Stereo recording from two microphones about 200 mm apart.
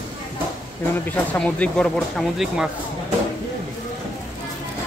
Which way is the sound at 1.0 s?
5° left (ahead or behind).